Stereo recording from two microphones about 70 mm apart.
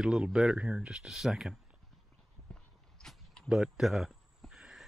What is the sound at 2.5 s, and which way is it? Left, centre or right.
Walk, centre.